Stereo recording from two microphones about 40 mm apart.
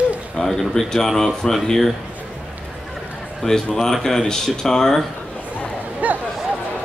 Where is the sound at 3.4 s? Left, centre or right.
Centre.